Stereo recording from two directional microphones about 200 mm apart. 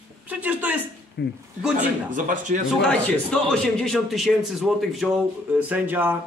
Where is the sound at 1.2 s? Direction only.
60° left (ahead or behind).